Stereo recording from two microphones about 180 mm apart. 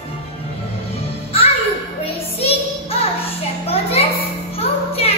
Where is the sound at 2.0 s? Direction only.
35° left (ahead or behind).